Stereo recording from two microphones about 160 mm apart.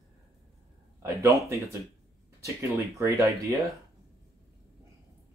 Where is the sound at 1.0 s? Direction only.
20° right (ahead or behind).